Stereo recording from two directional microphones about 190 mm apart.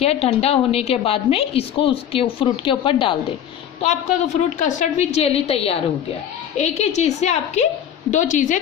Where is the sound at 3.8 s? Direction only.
40° left (ahead or behind).